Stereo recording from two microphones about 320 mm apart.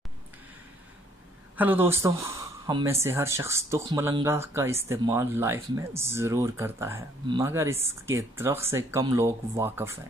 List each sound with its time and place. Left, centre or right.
1.6 s speech: centre